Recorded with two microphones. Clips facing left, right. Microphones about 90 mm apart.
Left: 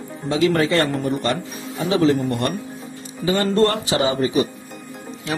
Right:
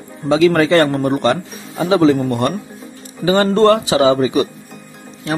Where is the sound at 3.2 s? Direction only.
75° right (ahead or behind).